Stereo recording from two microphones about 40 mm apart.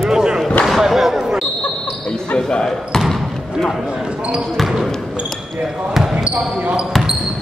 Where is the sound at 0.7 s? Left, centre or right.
Centre.